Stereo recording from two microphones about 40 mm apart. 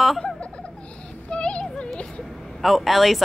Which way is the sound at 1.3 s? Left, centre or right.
Left.